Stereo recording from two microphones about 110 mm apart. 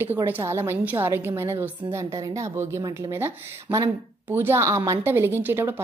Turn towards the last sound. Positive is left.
turn(degrees=-20)  # may be behind; listen again after turning